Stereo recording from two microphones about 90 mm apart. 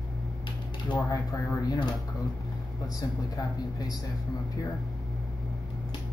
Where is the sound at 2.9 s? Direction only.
45° left (ahead or behind).